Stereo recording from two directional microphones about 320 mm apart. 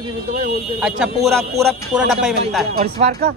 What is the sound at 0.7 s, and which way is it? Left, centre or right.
Speech, centre.